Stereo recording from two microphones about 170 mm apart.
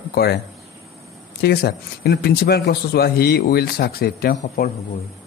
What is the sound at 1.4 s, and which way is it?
A man's voice, 70° left (ahead or behind).